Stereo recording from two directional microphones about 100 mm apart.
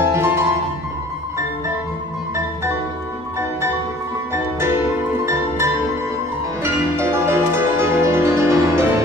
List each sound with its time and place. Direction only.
0.0 s music: 25° right (ahead or behind)
4.3 s music: 25° right (ahead or behind)